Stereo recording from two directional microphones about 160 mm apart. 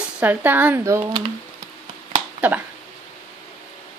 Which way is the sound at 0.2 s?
10° right (ahead or behind).